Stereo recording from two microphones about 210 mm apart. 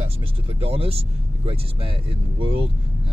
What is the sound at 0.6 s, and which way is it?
Speech, 25° right (ahead or behind).